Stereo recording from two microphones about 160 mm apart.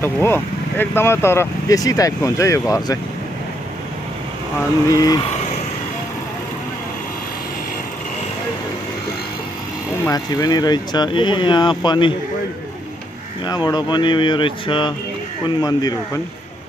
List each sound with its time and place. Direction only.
0.0 s speech: 15° left (ahead or behind)
4.8 s speech: 20° left (ahead or behind)
10.0 s speech: 25° left (ahead or behind)
13.5 s speech: 25° left (ahead or behind)